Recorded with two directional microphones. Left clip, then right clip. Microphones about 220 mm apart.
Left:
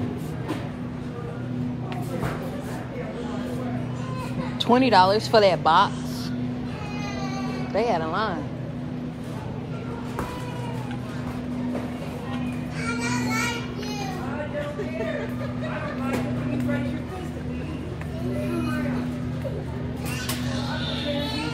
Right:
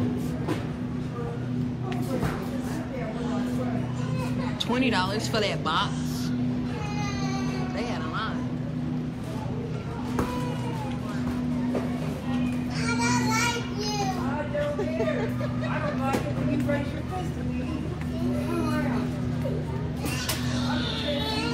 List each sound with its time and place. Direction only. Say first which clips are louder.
4.6 s speech: left 10 dB; 15° left (ahead or behind)
7.7 s music: left 8 dB; 20° left (ahead or behind)